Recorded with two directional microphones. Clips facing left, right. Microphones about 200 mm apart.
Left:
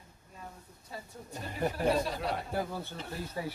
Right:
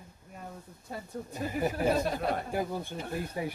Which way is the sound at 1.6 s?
5° right (ahead or behind).